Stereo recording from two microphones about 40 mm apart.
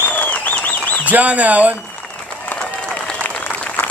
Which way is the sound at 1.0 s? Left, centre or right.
Right.